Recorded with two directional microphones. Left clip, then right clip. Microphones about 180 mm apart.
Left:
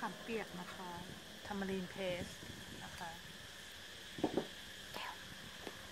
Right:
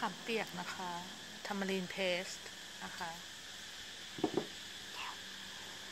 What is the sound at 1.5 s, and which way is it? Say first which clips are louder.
Speech: right 4 dB; 25° right (ahead or behind).